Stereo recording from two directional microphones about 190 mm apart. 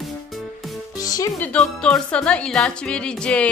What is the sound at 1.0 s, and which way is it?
Speech, 20° left (ahead or behind).